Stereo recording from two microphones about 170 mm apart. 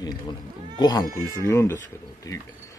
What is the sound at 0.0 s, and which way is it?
Speech, 25° left (ahead or behind).